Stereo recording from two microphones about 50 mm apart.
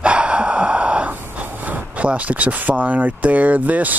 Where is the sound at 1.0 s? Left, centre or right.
Right.